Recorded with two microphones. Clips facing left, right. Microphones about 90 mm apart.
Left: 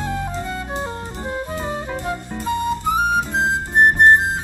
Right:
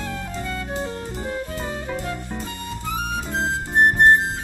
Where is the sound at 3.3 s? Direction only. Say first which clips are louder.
Left 3 dB; 20° left (ahead or behind).